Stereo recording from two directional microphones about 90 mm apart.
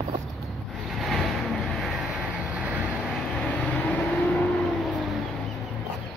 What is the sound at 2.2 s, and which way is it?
Vehicle, 15° right (ahead or behind).